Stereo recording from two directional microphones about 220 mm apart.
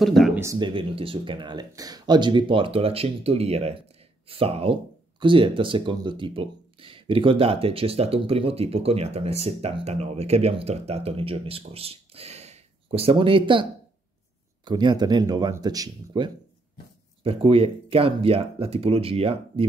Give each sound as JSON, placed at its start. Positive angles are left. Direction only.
{"t": 0.0, "sound": "speech", "side_deg": 0}
{"t": 0.4, "sound": "speech", "side_deg": -15}